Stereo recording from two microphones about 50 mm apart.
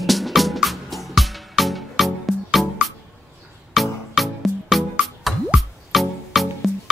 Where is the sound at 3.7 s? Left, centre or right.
Centre.